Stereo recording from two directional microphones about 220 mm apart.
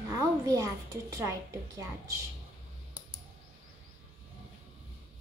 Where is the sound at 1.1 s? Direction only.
15° right (ahead or behind).